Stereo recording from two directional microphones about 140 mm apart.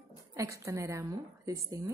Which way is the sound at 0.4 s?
20° right (ahead or behind).